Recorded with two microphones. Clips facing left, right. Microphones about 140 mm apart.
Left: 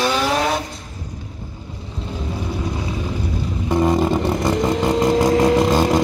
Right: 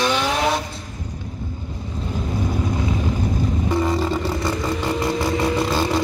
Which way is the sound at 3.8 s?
20° left (ahead or behind).